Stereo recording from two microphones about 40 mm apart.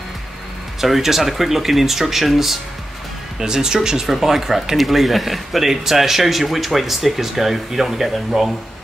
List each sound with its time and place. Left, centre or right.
0.7 s speech: centre
3.3 s speech: centre